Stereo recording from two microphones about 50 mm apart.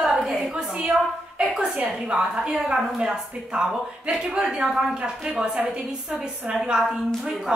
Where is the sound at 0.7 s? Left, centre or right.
Centre.